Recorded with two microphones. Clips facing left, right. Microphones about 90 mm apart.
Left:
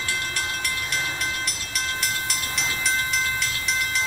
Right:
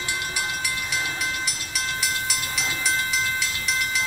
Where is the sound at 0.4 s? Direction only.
5° right (ahead or behind).